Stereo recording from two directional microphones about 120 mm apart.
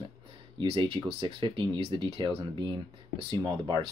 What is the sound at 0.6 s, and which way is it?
Speech, 40° right (ahead or behind).